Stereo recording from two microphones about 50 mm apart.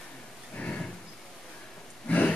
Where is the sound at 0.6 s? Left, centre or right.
Centre.